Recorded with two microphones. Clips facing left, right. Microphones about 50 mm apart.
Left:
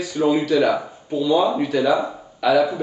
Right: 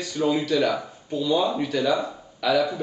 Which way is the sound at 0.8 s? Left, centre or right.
Centre.